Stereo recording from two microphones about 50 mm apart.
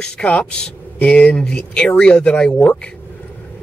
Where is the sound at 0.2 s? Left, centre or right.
Left.